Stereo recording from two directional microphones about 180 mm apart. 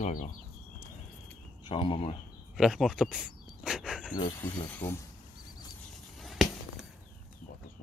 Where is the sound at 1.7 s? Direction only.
30° left (ahead or behind).